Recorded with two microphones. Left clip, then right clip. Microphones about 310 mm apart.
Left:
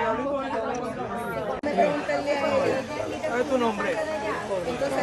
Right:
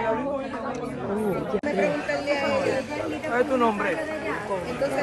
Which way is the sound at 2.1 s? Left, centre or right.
Left.